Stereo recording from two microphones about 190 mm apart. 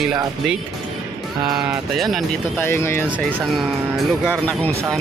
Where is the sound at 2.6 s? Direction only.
15° left (ahead or behind).